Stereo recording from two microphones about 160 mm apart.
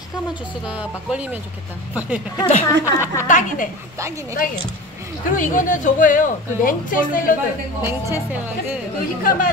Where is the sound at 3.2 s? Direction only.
55° left (ahead or behind).